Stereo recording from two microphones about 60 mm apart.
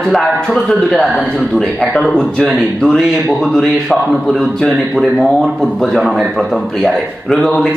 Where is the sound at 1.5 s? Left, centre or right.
Centre.